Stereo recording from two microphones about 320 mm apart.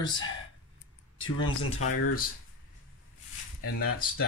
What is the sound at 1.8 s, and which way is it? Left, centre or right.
Speech, left.